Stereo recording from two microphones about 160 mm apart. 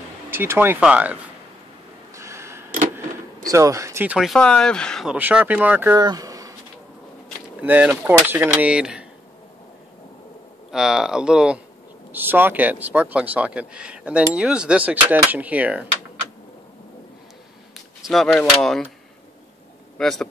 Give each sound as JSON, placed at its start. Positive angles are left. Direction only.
{"t": 0.3, "sound": "speech", "side_deg": -15}
{"t": 2.1, "sound": "a sound", "side_deg": -15}
{"t": 3.4, "sound": "speech", "side_deg": -20}
{"t": 5.1, "sound": "speech", "side_deg": -10}
{"t": 5.9, "sound": "a sound", "side_deg": -25}
{"t": 7.6, "sound": "speech", "side_deg": -10}
{"t": 10.7, "sound": "speech", "side_deg": -5}
{"t": 18.0, "sound": "speech", "side_deg": 0}
{"t": 20.0, "sound": "speech", "side_deg": 0}